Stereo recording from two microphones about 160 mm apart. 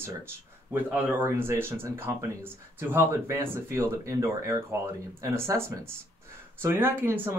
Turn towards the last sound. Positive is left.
turn(degrees=-15)  # may be behind; listen again after turning